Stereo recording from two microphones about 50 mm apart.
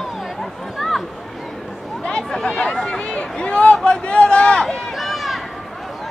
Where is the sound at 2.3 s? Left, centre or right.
Centre.